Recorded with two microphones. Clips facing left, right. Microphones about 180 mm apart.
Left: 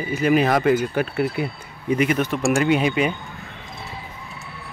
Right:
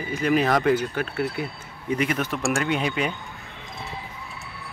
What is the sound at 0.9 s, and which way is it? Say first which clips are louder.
Speech: left 4 dB; 15° left (ahead or behind).